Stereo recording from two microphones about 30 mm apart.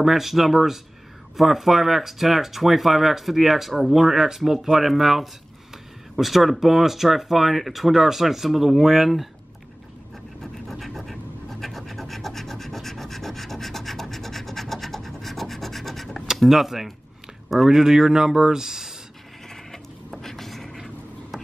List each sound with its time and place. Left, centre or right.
0.0 s speech: centre
10.4 s scratch: centre
16.4 s speech: centre
17.6 s speech: centre
19.5 s a sound: centre